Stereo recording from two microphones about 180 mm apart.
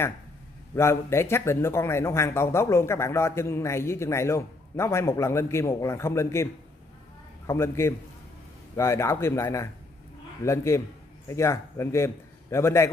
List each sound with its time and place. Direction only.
0.7 s speech: 15° left (ahead or behind)